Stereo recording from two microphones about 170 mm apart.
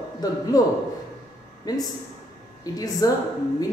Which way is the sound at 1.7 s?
20° left (ahead or behind).